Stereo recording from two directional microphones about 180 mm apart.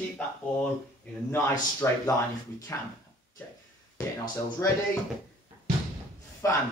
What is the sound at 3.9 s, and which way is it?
Speech, 15° left (ahead or behind).